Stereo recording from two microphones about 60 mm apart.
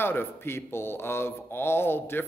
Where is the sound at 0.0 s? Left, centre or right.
Left.